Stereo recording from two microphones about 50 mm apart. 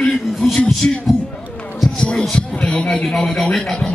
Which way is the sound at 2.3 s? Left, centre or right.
Left.